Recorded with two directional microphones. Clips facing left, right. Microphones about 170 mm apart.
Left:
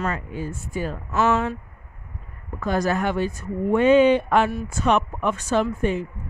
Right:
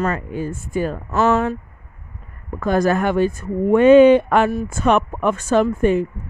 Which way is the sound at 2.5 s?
50° right (ahead or behind).